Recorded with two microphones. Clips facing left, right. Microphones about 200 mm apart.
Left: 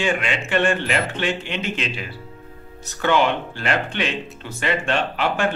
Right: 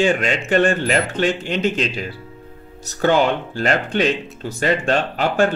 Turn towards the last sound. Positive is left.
turn(degrees=-40)  # may be behind; listen again after turning